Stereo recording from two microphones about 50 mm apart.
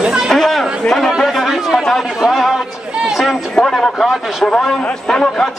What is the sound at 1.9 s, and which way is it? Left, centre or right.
Speech, centre.